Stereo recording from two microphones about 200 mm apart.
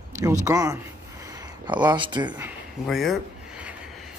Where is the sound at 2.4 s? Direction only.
Centre (ahead or behind).